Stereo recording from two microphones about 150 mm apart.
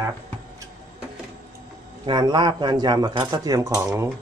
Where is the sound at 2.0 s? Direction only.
30° right (ahead or behind).